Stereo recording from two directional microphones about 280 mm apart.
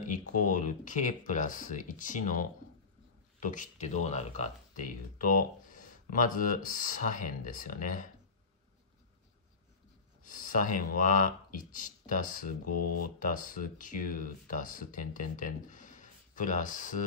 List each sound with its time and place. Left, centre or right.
0.0 s speech: left
10.2 s speech: left